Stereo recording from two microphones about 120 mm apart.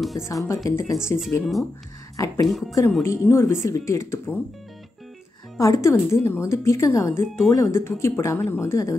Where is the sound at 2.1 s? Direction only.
25° left (ahead or behind).